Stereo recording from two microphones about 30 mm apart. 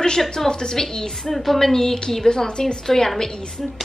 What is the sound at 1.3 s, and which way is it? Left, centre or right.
A woman's voice, centre.